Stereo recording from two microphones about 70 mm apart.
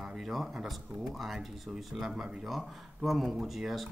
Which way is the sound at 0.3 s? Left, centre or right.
Centre.